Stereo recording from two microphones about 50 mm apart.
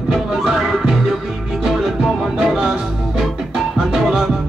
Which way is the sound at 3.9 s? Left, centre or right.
Centre.